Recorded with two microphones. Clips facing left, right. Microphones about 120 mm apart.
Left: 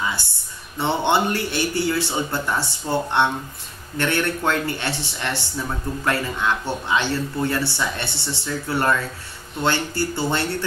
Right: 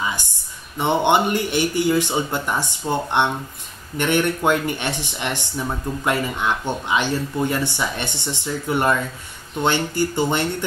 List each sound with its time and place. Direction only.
0.1 s speech: 15° right (ahead or behind)